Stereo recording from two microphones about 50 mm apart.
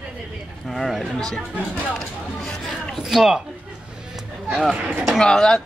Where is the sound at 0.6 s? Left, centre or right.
Centre.